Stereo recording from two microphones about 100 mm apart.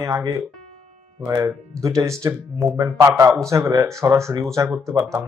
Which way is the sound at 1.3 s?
30° right (ahead or behind).